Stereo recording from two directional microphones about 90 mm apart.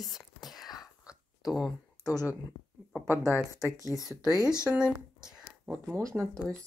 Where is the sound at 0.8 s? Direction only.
Centre (ahead or behind).